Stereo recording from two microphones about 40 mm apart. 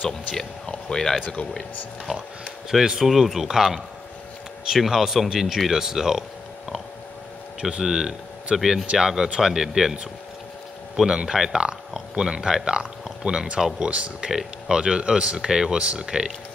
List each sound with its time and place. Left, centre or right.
0.4 s speech: centre
2.1 s speech: centre
7.8 s speech: centre
11.0 s speech: centre
13.6 s speech: centre
13.8 s speech: right
14.3 s speech: right
15.8 s speech: right
16.1 s speech: centre